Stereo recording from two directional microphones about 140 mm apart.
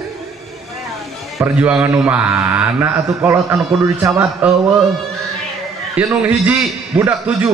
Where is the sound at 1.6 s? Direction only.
10° right (ahead or behind).